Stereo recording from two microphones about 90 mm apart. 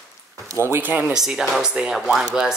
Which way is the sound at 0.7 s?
20° right (ahead or behind).